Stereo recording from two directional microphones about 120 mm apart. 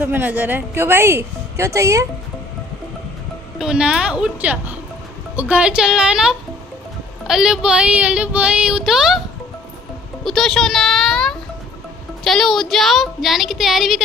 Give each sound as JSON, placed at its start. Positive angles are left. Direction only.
{"t": 0.0, "sound": "speech", "side_deg": -15}
{"t": 3.5, "sound": "child singing", "side_deg": -5}
{"t": 10.2, "sound": "a child's voice", "side_deg": 5}